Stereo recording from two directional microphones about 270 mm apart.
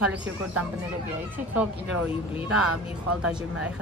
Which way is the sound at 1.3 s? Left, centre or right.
Centre.